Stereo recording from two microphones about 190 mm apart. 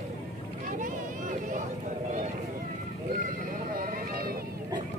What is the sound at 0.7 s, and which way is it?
Vehicle, 45° right (ahead or behind).